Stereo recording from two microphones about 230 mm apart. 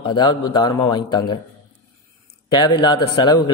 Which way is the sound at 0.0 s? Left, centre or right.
Centre.